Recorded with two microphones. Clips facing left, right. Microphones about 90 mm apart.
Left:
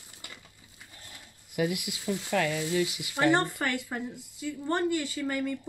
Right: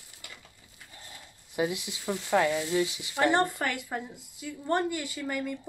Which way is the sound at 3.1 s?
5° right (ahead or behind).